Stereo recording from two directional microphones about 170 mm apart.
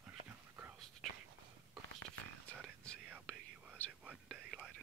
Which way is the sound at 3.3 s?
5° left (ahead or behind).